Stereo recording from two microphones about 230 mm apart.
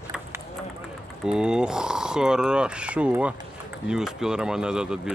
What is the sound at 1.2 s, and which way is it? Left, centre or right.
Speech, centre.